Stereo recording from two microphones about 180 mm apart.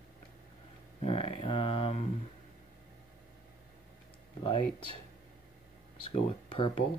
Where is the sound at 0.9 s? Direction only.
30° left (ahead or behind).